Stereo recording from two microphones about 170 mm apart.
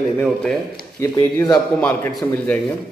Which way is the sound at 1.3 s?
15° left (ahead or behind).